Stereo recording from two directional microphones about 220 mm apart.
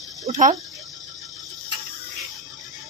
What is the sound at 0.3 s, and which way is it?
Speech, 35° right (ahead or behind).